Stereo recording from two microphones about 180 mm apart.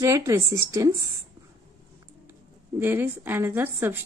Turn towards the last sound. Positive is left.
turn(degrees=-10)  # may be behind; listen again after turning